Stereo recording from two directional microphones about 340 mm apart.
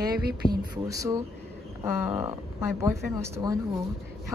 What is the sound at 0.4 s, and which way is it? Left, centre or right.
Speech, centre.